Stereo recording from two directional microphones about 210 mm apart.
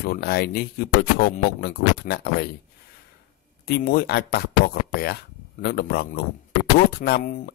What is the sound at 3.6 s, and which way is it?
Speech, 45° left (ahead or behind).